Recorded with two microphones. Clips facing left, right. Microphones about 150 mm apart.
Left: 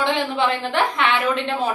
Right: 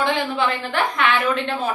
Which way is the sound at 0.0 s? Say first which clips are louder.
Even; 25° left (ahead or behind).